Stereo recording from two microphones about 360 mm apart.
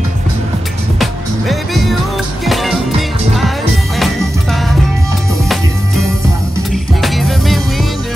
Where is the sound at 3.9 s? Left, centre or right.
Centre.